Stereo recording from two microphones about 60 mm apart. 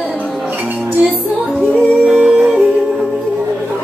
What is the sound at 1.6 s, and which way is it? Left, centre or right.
Music, right.